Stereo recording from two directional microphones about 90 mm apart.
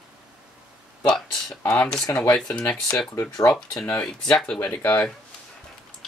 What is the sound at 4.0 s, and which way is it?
Speech, 10° left (ahead or behind).